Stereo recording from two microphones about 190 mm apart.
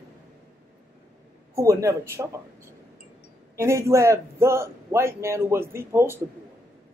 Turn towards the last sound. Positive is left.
turn(degrees=-15)  # may be behind; listen again after turning